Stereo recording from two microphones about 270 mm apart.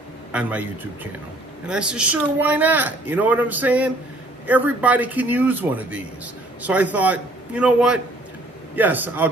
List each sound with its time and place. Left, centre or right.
0.3 s a man's voice: centre
1.7 s a man's voice: centre